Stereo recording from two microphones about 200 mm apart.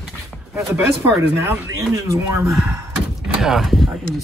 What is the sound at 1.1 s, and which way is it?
Speech, 15° right (ahead or behind).